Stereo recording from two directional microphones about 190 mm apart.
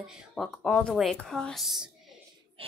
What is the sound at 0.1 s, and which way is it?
Speech, centre (ahead or behind).